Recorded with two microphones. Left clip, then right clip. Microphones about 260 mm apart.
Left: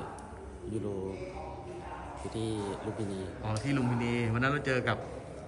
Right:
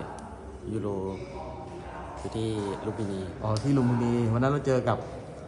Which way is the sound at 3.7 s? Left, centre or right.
Centre.